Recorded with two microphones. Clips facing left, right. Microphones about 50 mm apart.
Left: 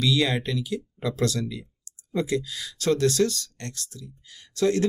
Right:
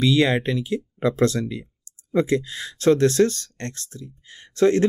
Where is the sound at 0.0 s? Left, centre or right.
Right.